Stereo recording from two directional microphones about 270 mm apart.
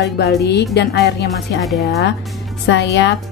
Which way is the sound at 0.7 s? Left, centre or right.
Left.